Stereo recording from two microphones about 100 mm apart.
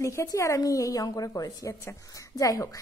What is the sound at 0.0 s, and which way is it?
A woman's voice, 30° left (ahead or behind).